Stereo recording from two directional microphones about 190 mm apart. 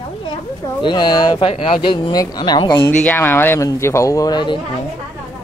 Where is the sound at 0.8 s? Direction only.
25° left (ahead or behind).